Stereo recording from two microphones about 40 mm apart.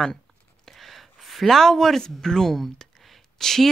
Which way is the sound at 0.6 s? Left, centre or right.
Centre.